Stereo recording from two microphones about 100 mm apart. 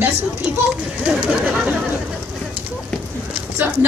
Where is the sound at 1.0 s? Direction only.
10° right (ahead or behind).